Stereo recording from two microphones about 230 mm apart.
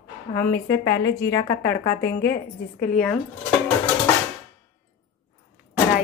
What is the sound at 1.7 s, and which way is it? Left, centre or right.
A woman's voice, left.